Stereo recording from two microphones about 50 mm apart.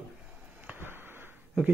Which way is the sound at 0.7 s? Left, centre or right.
Right.